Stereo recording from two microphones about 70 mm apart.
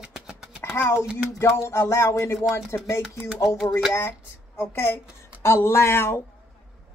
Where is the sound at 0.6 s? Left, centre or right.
Left.